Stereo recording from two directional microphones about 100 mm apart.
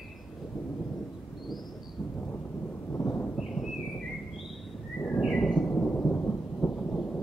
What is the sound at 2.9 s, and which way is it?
Thunder, 20° left (ahead or behind).